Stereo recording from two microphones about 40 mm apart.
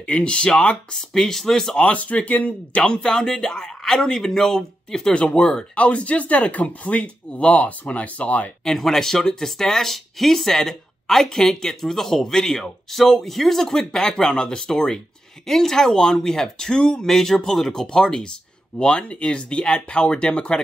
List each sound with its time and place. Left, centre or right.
0.0 s speech: left
0.9 s speech: centre
2.0 s speech: left; by 5.1 s centre
5.1 s speech: left
5.8 s speech: left
8.7 s speech: centre; by 20.6 s left